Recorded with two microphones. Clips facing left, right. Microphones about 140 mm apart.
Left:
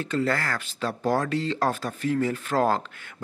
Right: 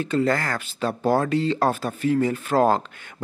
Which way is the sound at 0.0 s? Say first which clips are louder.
Right 4 dB; 15° right (ahead or behind).